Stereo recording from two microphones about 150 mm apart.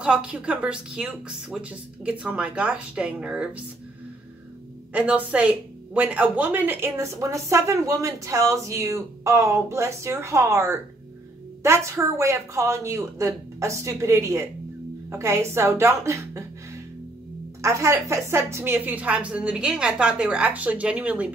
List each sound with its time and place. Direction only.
0.0 s a woman's voice: 5° right (ahead or behind)
4.9 s a woman's voice: 10° right (ahead or behind)
17.6 s a woman's voice: 20° right (ahead or behind)